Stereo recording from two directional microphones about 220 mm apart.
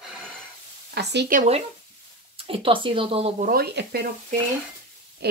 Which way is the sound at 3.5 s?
45° right (ahead or behind).